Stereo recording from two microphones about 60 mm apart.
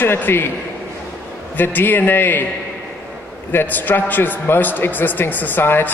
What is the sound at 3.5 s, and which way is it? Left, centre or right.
A man's voice, left.